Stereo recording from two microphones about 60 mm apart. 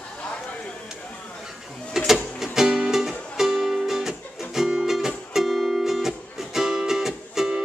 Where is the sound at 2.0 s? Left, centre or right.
Centre.